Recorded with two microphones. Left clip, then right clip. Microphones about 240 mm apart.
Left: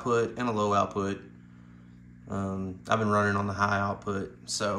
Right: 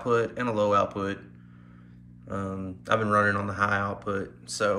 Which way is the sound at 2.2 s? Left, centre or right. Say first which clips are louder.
Right 1 dB; centre.